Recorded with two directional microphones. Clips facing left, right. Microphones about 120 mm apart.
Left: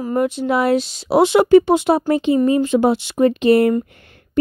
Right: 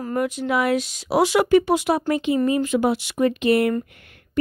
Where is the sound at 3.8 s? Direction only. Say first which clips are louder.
Left 3 dB; 30° left (ahead or behind).